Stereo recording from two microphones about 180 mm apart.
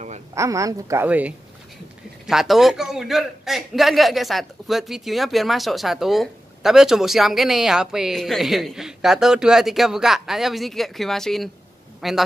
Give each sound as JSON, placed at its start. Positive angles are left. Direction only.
{"t": 0.3, "sound": "a woman's voice", "side_deg": -15}